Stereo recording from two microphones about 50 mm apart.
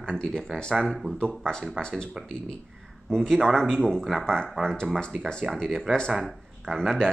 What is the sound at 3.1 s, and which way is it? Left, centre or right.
Speech, centre.